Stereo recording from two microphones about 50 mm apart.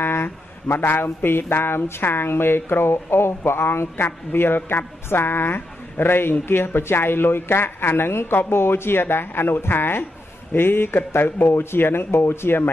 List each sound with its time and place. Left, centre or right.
0.0 s speech: left